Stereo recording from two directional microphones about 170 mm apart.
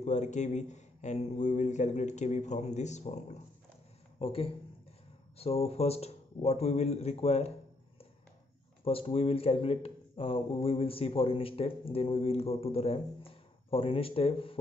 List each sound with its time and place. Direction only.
0.0 s speech: 45° left (ahead or behind)
8.8 s speech: 35° left (ahead or behind)